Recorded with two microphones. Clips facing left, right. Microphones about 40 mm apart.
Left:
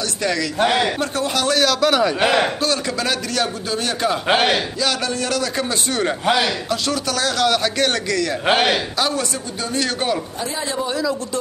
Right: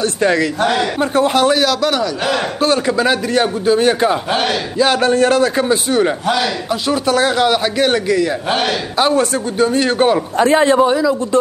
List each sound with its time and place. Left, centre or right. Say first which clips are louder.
0.0 s speech: right 7 dB; right
0.6 s a man's voice: right 2 dB; centre
1.1 s a man's voice: right 8 dB; right
1.5 s speech: right 2 dB; centre
2.0 s a man's voice: left 1 dB; left
2.6 s a man's voice: right 7 dB; right
5.6 s a man's voice: right 7 dB; centre
6.7 s a man's voice: right 6 dB; right
8.9 s a man's voice: right 7 dB; right
10.3 s speech: right 13 dB; right
10.9 s a man's voice: right 7 dB; centre